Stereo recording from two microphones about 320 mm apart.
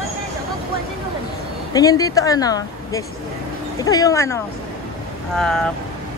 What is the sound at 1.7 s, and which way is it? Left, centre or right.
Speech, centre.